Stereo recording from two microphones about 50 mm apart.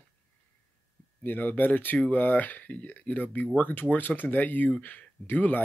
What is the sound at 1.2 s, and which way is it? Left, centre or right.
Speech, left.